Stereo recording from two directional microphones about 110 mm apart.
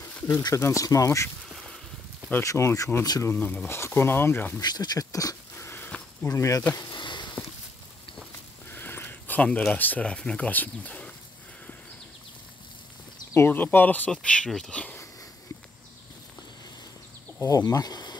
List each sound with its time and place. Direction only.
0.3 s speech: 30° left (ahead or behind)
1.5 s duck: 5° right (ahead or behind)
2.4 s speech: 30° left (ahead or behind)
3.3 s speech: 15° left (ahead or behind)
4.6 s speech: 40° left (ahead or behind)
6.9 s a sound: 45° left (ahead or behind)
8.6 s a sound: 20° left (ahead or behind)
9.7 s speech: 15° left (ahead or behind)
13.3 s speech: 20° left (ahead or behind)
17.4 s speech: 35° left (ahead or behind)